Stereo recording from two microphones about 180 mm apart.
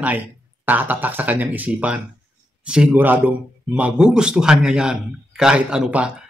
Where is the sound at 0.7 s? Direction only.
10° right (ahead or behind).